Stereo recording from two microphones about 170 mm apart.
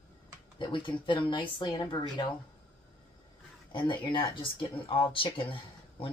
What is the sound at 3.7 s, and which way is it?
Speech, 30° left (ahead or behind).